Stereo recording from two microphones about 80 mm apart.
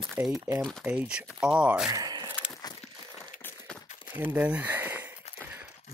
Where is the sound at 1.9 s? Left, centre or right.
Right.